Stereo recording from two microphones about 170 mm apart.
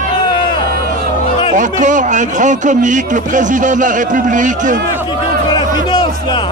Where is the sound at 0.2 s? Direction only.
30° left (ahead or behind).